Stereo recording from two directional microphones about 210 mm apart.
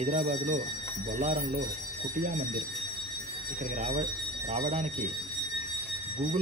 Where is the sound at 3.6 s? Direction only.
30° right (ahead or behind).